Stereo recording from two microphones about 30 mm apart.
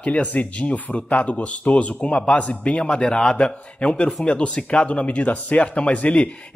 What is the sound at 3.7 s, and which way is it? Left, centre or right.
Speech, left.